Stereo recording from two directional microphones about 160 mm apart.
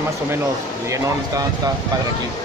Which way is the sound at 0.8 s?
20° right (ahead or behind).